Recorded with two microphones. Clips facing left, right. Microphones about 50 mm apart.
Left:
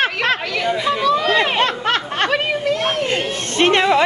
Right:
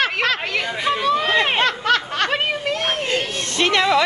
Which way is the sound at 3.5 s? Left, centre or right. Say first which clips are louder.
Left 3 dB; left.